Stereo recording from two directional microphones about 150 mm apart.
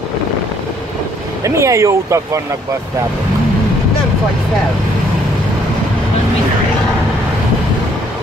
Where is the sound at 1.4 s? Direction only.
20° right (ahead or behind).